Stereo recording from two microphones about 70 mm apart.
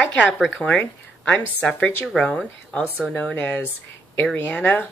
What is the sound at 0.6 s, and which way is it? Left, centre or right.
Speech, centre.